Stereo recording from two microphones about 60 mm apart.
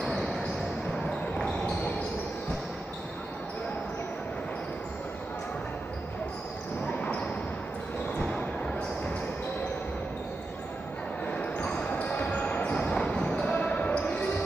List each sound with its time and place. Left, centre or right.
8.2 s basketball bounce: centre
11.3 s basketball bounce: left
12.7 s basketball bounce: centre